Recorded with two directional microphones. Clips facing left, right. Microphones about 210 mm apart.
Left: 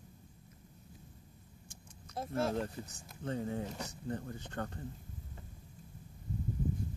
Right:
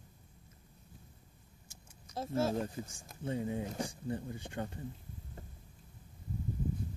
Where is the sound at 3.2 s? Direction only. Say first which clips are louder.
Right 1 dB; 15° right (ahead or behind).